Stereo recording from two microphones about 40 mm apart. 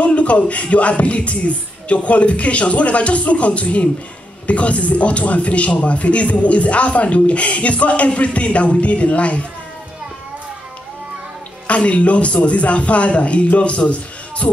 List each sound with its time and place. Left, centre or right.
0.0 s speech: left
11.6 s a man's voice: left